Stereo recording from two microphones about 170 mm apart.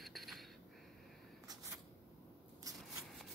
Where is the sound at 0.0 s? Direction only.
Centre (ahead or behind).